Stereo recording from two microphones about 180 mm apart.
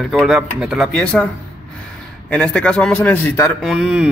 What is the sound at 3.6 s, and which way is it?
Speech, centre (ahead or behind).